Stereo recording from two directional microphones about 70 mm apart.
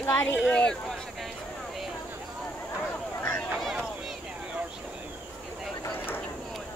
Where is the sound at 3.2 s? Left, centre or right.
Left.